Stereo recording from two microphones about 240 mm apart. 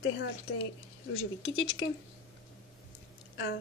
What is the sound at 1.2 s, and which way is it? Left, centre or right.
Speech, left.